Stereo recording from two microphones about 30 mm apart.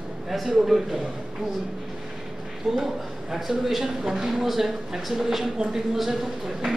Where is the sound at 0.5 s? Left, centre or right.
Centre.